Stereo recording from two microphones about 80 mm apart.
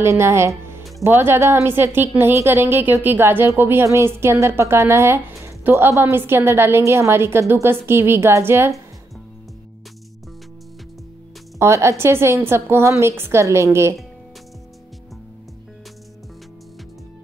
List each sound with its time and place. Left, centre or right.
0.0 s a woman's voice: right
11.5 s a woman's voice: right